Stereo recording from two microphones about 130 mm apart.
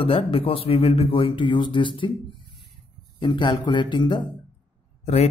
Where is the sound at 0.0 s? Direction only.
45° left (ahead or behind).